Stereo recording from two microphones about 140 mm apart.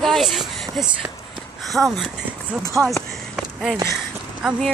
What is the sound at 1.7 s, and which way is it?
Speech, centre (ahead or behind).